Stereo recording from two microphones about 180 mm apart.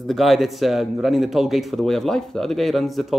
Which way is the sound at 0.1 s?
Centre (ahead or behind).